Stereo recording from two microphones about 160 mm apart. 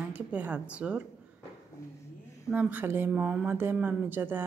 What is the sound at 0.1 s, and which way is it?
Speech, 10° right (ahead or behind).